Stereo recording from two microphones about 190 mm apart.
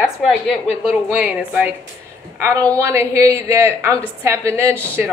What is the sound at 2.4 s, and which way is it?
A woman's voice, 15° right (ahead or behind).